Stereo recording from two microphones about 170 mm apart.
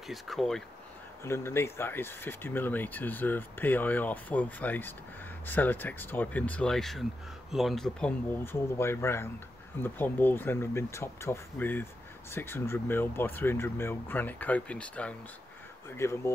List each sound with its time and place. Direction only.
0.1 s speech: centre (ahead or behind)
1.2 s speech: 15° left (ahead or behind)